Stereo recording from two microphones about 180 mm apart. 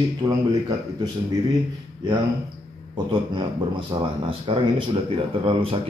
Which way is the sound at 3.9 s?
25° right (ahead or behind).